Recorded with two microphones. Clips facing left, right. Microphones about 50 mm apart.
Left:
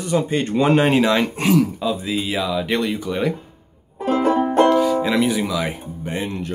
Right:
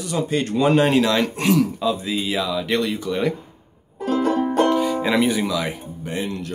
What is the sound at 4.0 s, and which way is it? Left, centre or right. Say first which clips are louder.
Music: left 2 dB; left.